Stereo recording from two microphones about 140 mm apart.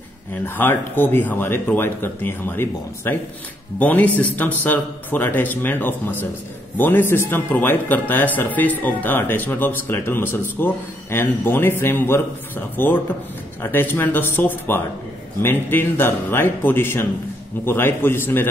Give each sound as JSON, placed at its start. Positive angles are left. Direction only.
{"t": 0.3, "sound": "a man's voice", "side_deg": 15}